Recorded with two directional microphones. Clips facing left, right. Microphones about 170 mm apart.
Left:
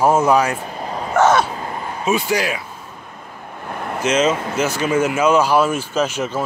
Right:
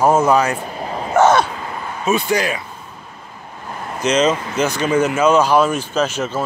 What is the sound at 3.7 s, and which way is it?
Vehicle, 60° left (ahead or behind).